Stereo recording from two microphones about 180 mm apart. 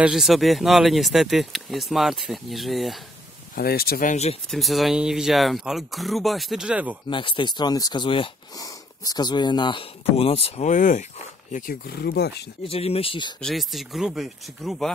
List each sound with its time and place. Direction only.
0.0 s speech: centre (ahead or behind)
3.5 s speech: 60° left (ahead or behind); by 4.4 s 40° left (ahead or behind)
4.5 s speech: centre (ahead or behind)
7.1 s speech: 25° left (ahead or behind); by 12.4 s 65° left (ahead or behind)
12.6 s speech: 35° left (ahead or behind)
13.4 s speech: centre (ahead or behind)